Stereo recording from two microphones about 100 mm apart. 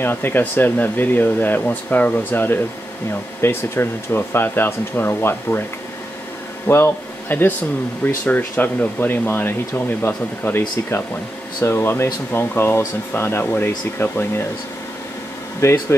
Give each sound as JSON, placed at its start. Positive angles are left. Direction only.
{"t": 0.0, "sound": "speech", "side_deg": 20}
{"t": 6.7, "sound": "speech", "side_deg": 20}
{"t": 11.6, "sound": "speech", "side_deg": 25}
{"t": 15.6, "sound": "speech", "side_deg": 25}